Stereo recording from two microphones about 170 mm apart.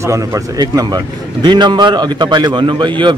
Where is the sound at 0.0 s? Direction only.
20° right (ahead or behind).